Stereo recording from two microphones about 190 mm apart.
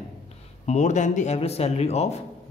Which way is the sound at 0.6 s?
40° left (ahead or behind).